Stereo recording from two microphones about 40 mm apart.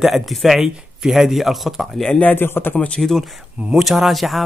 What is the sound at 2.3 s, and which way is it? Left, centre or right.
Speech, left.